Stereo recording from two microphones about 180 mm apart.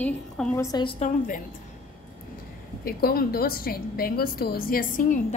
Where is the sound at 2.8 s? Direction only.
55° left (ahead or behind).